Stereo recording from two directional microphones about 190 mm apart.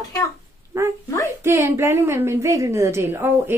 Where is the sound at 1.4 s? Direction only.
15° right (ahead or behind).